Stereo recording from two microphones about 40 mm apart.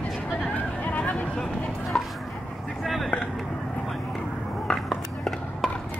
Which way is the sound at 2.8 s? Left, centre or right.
Centre.